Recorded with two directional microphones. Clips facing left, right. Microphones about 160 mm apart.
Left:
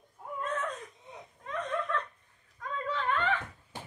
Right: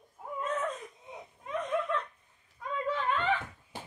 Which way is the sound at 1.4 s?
15° right (ahead or behind).